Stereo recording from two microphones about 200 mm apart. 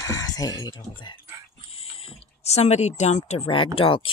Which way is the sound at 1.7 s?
30° left (ahead or behind).